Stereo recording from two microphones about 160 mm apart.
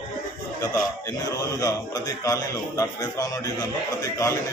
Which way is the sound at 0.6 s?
20° left (ahead or behind).